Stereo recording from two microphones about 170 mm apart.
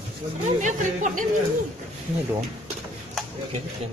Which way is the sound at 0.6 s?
45° right (ahead or behind).